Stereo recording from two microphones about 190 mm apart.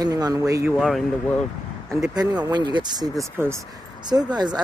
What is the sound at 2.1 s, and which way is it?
Speech, 20° right (ahead or behind).